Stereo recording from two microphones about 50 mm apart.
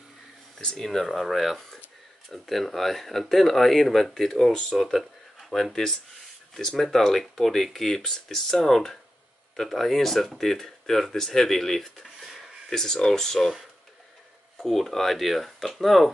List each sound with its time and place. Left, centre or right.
0.6 s speech: centre
0.8 s speech: centre
12.7 s speech: centre
14.6 s speech: centre